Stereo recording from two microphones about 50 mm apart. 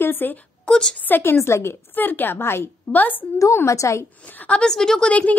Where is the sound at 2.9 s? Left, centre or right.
Left.